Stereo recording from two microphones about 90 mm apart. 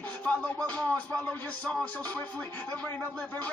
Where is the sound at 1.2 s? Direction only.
15° left (ahead or behind).